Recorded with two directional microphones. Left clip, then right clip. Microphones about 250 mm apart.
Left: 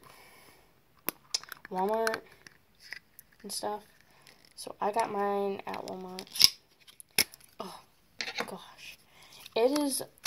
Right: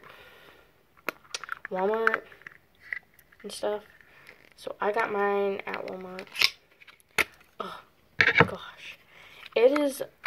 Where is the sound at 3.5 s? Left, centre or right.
Left.